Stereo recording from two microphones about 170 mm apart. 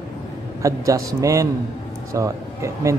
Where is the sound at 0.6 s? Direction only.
20° right (ahead or behind).